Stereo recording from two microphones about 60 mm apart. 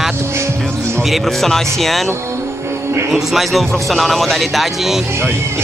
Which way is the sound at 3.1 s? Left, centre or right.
Centre.